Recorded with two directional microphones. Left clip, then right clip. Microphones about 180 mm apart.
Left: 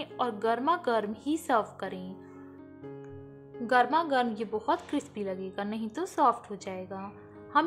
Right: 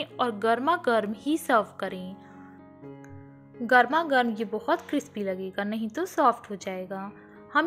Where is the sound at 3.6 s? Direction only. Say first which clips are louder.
Right 4 dB; 20° right (ahead or behind).